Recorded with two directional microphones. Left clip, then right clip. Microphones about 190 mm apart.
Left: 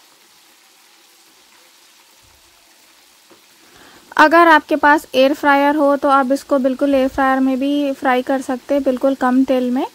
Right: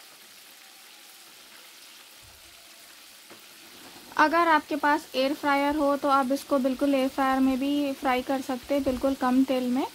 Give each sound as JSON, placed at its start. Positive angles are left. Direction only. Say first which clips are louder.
{"t": 4.1, "sound": "speech", "louder": "left 12 dB", "side_deg": 40}